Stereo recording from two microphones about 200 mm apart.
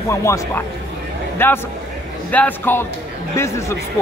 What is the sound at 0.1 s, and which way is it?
A man's voice, 15° left (ahead or behind).